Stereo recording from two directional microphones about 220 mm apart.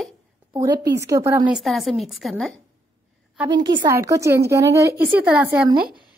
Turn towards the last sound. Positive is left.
turn(degrees=-5)  # may be behind; listen again after turning